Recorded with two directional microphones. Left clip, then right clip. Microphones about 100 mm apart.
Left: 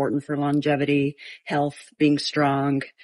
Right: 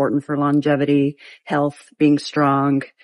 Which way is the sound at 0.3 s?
30° right (ahead or behind).